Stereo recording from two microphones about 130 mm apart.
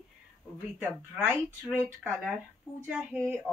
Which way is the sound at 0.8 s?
15° right (ahead or behind).